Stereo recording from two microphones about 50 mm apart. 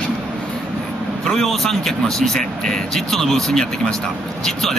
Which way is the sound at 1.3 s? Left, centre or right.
Centre.